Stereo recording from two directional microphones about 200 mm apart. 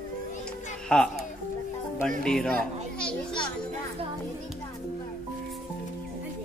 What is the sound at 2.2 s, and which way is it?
Speech, 5° left (ahead or behind).